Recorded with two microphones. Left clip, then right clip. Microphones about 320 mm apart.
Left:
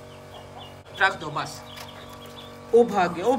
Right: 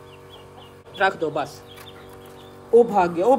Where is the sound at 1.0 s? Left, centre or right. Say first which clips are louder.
Right 2 dB; centre.